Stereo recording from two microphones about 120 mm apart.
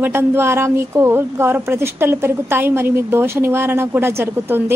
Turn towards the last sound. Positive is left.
turn(degrees=-20)  # may be behind; listen again after turning